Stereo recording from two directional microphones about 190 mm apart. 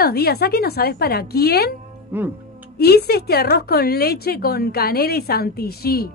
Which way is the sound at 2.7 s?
55° left (ahead or behind).